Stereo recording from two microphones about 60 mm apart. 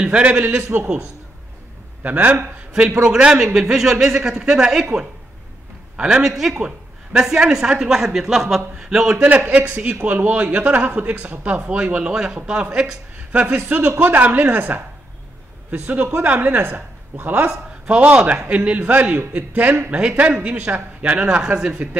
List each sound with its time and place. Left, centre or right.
0.0 s speech: centre
2.0 s a woman's voice: right
3.0 s a woman's voice: centre
9.5 s speech: right
10.9 s a woman's voice: right
11.6 s a woman's voice: centre
13.7 s a woman's voice: right
17.5 s speech: centre